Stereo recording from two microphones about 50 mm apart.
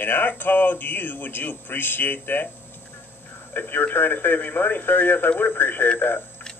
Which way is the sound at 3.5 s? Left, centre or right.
Left.